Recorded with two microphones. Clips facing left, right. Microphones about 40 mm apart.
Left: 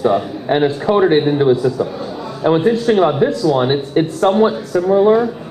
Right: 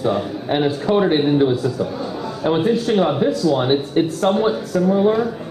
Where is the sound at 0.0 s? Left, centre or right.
Centre.